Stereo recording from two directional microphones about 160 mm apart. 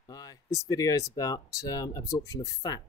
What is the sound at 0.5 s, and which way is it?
Speech, 20° left (ahead or behind).